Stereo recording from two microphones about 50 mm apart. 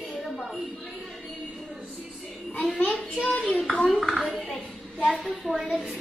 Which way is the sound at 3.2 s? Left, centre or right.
Left.